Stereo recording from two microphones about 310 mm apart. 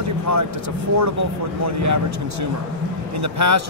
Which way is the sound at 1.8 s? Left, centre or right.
Right.